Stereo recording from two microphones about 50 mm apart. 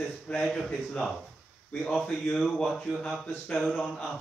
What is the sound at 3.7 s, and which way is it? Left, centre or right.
Speech, centre.